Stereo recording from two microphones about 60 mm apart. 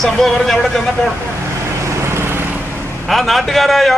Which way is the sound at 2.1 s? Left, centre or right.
Right.